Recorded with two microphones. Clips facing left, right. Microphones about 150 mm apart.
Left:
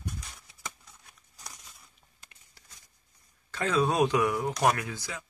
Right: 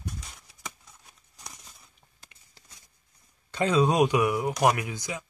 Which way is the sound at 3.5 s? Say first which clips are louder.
Right 4 dB; 20° right (ahead or behind).